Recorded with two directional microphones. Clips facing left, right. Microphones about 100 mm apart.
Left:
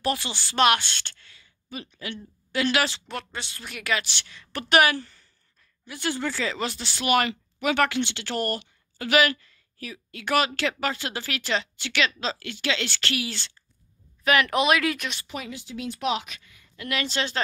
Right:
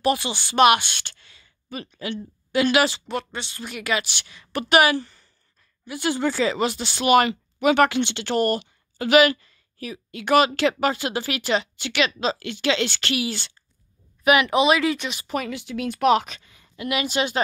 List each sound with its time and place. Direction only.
0.0 s a woman's voice: 15° right (ahead or behind); by 15.1 s centre (ahead or behind)
15.2 s speech: 55° right (ahead or behind)
16.3 s a sound: 30° right (ahead or behind)
16.8 s a woman's voice: 15° right (ahead or behind)